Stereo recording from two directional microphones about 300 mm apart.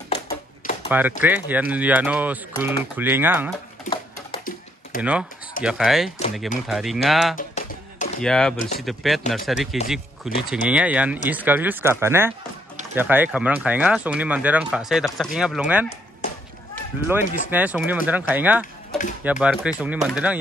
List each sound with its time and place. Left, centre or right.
0.1 s a sound: left
0.8 s speech: centre
3.8 s a sound: centre
4.9 s speech: left
5.6 s speech: centre
7.3 s a sound: left
8.2 s speech: centre
8.5 s speech: left
8.8 s speech: centre
17.5 s speech: centre